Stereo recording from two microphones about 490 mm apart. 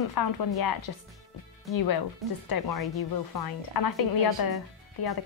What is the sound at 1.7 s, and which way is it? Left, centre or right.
A woman's voice, left.